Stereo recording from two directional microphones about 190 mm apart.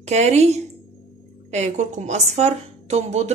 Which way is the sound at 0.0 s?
35° right (ahead or behind).